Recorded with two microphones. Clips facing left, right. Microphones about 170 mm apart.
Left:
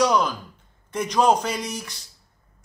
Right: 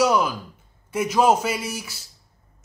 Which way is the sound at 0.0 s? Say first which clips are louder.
Right 1 dB; 5° right (ahead or behind).